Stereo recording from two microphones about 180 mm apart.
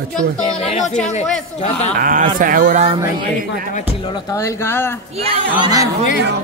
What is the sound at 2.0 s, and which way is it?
Speech, 50° right (ahead or behind).